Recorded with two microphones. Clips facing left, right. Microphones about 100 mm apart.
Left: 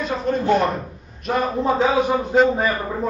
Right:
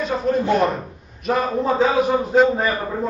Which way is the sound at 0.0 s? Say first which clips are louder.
Right 1 dB; centre (ahead or behind).